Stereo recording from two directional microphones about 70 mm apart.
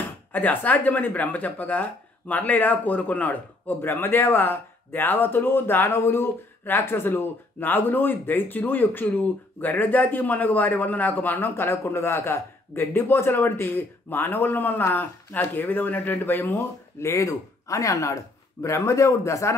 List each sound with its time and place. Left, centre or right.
0.3 s speech: left
17.1 s speech: left